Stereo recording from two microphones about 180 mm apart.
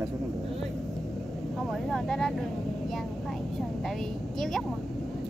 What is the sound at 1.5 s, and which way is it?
A woman's voice, centre (ahead or behind).